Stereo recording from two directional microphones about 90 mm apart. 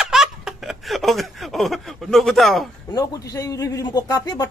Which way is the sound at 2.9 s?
45° left (ahead or behind).